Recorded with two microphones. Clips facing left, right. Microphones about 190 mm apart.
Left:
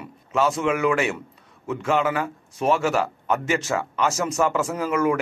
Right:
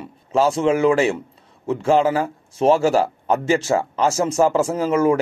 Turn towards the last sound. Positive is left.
turn(degrees=-30)  # may be behind; listen again after turning